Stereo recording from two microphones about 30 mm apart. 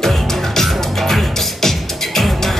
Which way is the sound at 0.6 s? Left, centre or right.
Centre.